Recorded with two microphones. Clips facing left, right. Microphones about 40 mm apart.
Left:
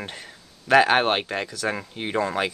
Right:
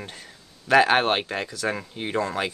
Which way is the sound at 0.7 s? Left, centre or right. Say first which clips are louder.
Left 1 dB; centre.